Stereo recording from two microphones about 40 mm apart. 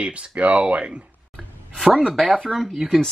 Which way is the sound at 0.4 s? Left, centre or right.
Right.